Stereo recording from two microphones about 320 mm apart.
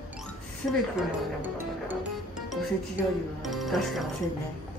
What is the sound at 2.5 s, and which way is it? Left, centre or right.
Speech, centre.